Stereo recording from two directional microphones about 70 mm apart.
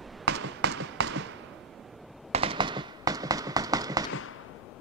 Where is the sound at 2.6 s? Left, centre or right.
Right.